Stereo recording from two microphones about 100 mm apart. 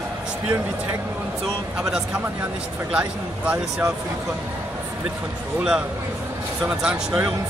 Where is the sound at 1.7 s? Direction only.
10° right (ahead or behind).